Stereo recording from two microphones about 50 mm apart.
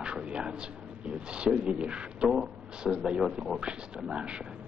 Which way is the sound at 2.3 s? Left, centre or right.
Centre.